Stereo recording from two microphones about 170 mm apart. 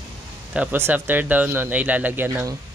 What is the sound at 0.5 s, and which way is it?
A child's voice, 10° right (ahead or behind).